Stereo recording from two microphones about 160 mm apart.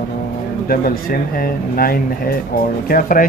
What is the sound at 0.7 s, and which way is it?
Speech, 65° left (ahead or behind).